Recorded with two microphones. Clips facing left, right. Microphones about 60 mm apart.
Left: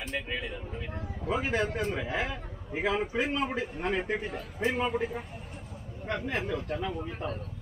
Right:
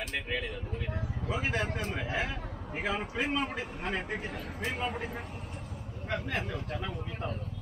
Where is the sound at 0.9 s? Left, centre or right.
Centre.